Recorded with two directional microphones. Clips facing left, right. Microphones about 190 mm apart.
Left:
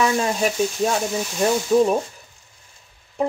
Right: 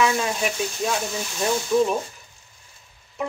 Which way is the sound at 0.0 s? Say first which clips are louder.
Left 2 dB; 35° left (ahead or behind).